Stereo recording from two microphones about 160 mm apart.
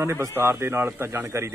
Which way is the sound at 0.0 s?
15° right (ahead or behind).